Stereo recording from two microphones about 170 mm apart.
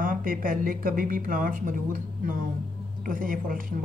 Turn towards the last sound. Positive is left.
turn(degrees=-50)  # may be behind; listen again after turning